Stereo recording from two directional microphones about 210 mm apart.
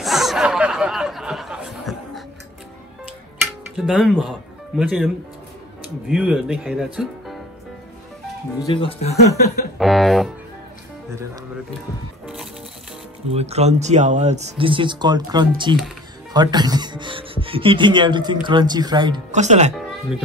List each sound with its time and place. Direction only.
0.0 s snicker: centre (ahead or behind)
3.7 s speech: centre (ahead or behind)
8.7 s speech: 25° left (ahead or behind)
9.8 s speech: centre (ahead or behind)
13.3 s speech: 30° right (ahead or behind)
19.3 s speech: 35° right (ahead or behind)